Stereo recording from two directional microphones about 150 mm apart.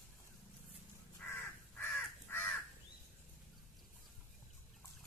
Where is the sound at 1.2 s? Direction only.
15° left (ahead or behind).